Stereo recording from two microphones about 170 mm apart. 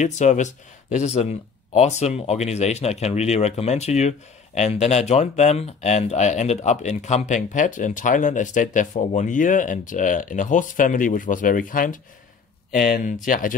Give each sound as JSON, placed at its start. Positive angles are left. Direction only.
{"t": 0.0, "sound": "speech", "side_deg": 45}